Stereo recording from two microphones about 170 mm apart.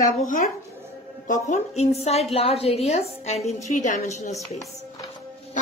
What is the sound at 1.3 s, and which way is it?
A woman's voice, 40° left (ahead or behind).